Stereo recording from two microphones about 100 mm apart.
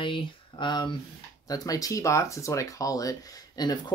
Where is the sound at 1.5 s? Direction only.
35° left (ahead or behind).